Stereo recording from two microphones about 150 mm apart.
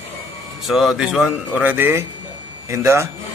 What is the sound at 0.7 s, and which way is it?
A man's voice, centre (ahead or behind).